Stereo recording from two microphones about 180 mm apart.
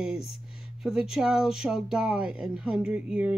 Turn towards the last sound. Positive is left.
turn(degrees=-5)  # may be behind; listen again after turning